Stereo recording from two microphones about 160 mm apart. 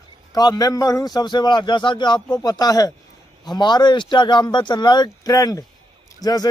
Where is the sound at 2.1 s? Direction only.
5° left (ahead or behind).